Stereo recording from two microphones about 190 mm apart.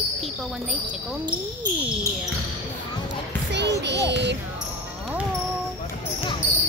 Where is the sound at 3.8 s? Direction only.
65° right (ahead or behind).